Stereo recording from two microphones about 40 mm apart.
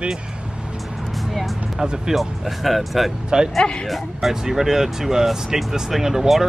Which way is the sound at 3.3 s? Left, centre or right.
Centre.